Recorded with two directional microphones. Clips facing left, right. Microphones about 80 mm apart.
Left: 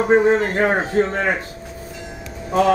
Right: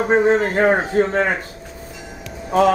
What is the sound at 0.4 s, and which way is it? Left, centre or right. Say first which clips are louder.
Speech: right 2 dB; centre.